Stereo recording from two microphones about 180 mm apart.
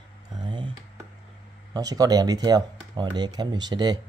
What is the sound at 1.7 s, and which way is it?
Speech, 20° right (ahead or behind).